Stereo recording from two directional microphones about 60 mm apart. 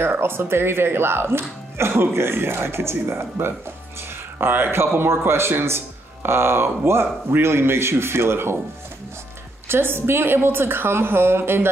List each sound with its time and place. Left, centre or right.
0.0 s a man's voice: right
9.7 s speech: right